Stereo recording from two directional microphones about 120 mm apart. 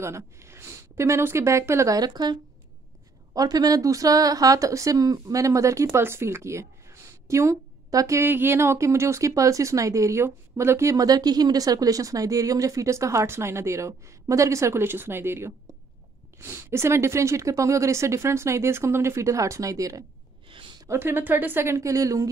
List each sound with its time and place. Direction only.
0.0 s a woman's voice: 25° right (ahead or behind)
3.3 s a woman's voice: 30° right (ahead or behind)
20.4 s a sound: 45° right (ahead or behind)
20.8 s a woman's voice: 20° right (ahead or behind)